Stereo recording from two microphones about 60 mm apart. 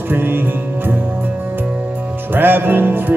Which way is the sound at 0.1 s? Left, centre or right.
Right.